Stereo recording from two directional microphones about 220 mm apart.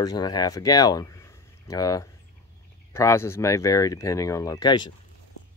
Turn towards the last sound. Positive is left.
turn(degrees=20)  # may be behind; listen again after turning